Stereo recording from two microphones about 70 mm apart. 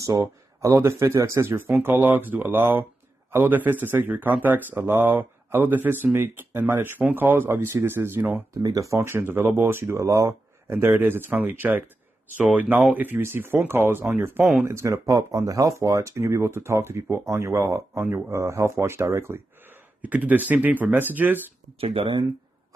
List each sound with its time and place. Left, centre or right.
0.0 s speech: right
8.6 s speech: right
10.7 s speech: right
14.6 s speech: right
20.0 s speech: right